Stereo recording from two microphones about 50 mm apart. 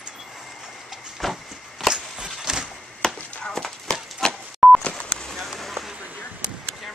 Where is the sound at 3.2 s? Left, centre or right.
Left.